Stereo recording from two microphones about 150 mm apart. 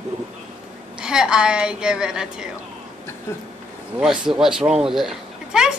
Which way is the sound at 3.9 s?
5° right (ahead or behind).